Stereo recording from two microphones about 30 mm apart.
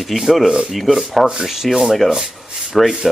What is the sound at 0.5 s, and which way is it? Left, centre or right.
Rub, right.